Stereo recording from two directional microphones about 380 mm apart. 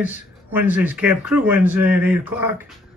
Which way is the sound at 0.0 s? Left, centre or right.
Centre.